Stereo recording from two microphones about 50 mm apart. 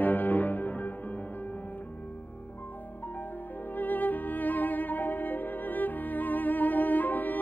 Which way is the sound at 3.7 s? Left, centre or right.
Left.